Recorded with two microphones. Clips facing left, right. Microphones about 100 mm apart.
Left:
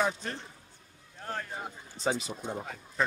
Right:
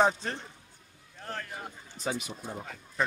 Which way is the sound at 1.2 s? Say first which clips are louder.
Left 2 dB; 10° left (ahead or behind).